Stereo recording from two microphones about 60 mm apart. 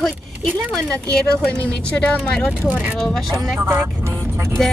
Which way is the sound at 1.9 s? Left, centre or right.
Centre.